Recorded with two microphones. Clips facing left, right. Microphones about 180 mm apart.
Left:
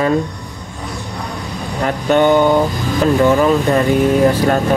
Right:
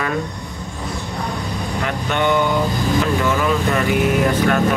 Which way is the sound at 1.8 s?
40° left (ahead or behind).